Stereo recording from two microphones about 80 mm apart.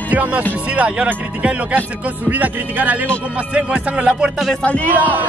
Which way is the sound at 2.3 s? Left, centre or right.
Right.